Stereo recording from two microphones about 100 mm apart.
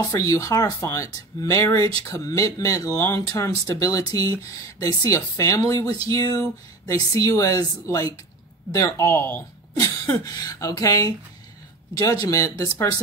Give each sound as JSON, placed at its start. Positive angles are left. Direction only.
{"t": 0.0, "sound": "speech", "side_deg": 35}
{"t": 9.8, "sound": "speech", "side_deg": 35}